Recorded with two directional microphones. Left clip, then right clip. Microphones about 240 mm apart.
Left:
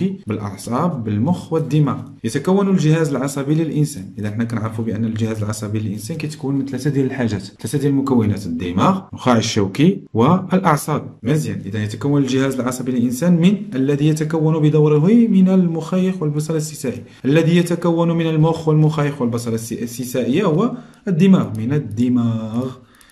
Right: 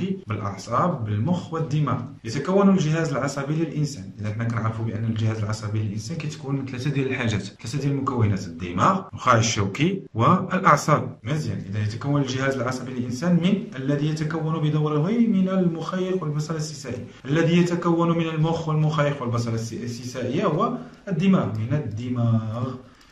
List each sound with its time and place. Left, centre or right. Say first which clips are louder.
0.0 s a man's voice: left 5 dB; left
8.0 s a man's voice: left 7 dB; left